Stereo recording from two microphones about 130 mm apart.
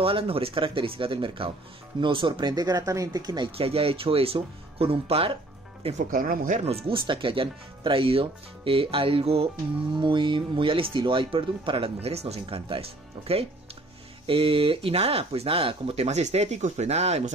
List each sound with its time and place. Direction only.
0.0 s speech: 45° right (ahead or behind)
3.5 s speech: 50° right (ahead or behind)
5.9 s speech: 90° right
6.6 s speech: 45° right (ahead or behind)
14.2 s speech: 45° right (ahead or behind)